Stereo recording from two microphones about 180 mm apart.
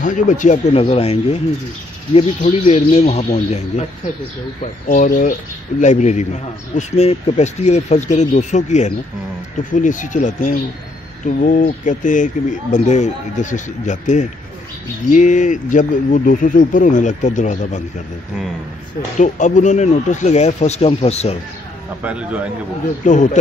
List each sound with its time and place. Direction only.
0.0 s a man's voice: 45° left (ahead or behind)
4.8 s a man's voice: 45° left (ahead or behind)
19.1 s a man's voice: 45° left (ahead or behind)
22.0 s speech: 5° right (ahead or behind)
23.0 s speech: 45° left (ahead or behind)